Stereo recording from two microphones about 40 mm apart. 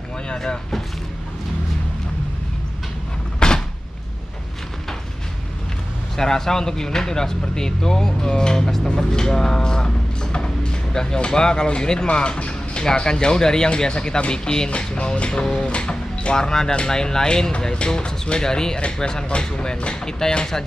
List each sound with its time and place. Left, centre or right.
3.3 s a sound: centre
6.1 s speech: centre
15.4 s speech: centre
15.7 s speech: left